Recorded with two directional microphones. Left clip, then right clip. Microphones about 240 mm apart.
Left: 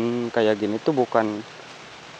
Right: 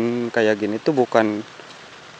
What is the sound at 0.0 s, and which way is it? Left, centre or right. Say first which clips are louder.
Speech: right 2 dB; centre.